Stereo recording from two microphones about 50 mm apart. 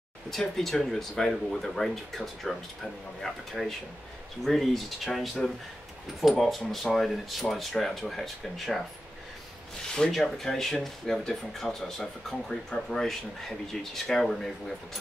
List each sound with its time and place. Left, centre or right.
0.6 s speech: centre
9.8 s speech: centre